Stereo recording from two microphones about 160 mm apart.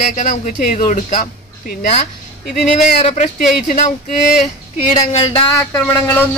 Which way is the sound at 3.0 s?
45° left (ahead or behind).